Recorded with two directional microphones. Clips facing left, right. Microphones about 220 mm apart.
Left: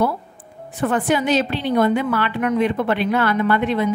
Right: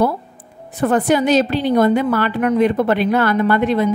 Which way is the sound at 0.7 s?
40° right (ahead or behind).